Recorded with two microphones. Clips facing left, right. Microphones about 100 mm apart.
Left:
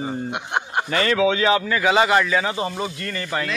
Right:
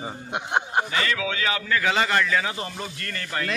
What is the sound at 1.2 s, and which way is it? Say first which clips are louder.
A man's voice: left 9 dB; 25° left (ahead or behind).